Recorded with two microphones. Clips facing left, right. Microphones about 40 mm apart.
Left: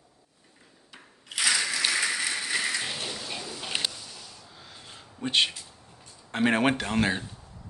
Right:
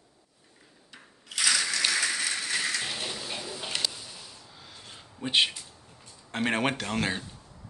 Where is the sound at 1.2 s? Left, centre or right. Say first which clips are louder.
Left 1 dB; centre.